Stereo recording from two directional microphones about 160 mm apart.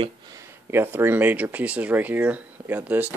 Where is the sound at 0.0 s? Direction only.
20° right (ahead or behind).